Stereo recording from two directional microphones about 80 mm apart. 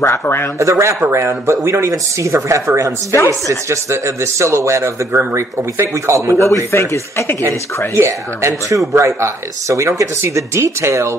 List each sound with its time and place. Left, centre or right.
0.0 s speech: left
0.6 s speech: right
6.4 s speech: left
7.9 s speech: right